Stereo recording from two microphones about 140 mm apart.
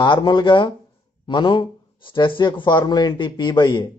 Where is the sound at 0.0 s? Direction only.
35° left (ahead or behind).